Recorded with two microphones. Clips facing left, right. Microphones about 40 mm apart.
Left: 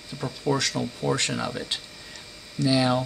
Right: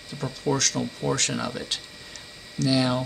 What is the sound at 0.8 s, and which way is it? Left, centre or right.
Speech, centre.